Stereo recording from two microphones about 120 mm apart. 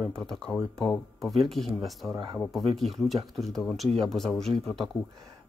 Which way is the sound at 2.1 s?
25° right (ahead or behind).